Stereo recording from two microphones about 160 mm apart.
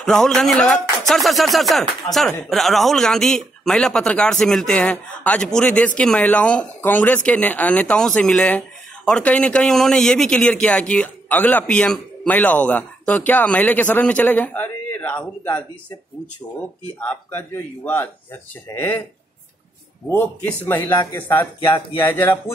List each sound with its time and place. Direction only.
0.0 s speech: 5° left (ahead or behind)
17.0 s speech: 10° left (ahead or behind)
20.1 s speech: 15° left (ahead or behind)